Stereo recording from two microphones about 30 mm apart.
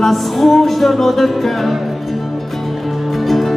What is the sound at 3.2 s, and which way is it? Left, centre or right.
Music, centre.